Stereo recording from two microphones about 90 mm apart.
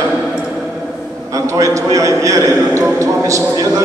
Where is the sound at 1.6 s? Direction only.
40° right (ahead or behind).